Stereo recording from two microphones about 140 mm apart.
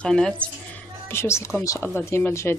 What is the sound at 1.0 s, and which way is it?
Speech, 20° left (ahead or behind).